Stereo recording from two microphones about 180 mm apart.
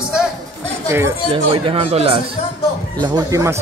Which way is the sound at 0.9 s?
15° right (ahead or behind).